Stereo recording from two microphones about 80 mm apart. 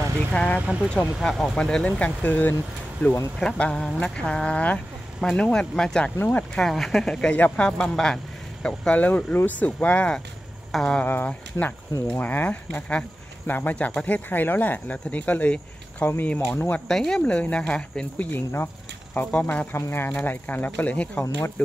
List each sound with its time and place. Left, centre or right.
0.3 s speech: centre
0.6 s speech: centre
0.8 s speech: centre
6.6 s speech: centre
7.3 s speech: left
7.6 s speech: centre
11.0 s speech: left
11.6 s speech: left
12.1 s speech: left
16.8 s speech: centre
18.3 s speech: left
19.1 s speech: centre